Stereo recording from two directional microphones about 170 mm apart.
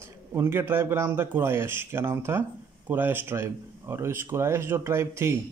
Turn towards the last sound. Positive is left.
turn(degrees=-15)  # may be behind; listen again after turning